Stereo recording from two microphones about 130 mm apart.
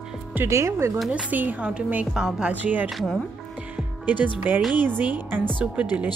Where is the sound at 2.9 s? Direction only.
Centre (ahead or behind).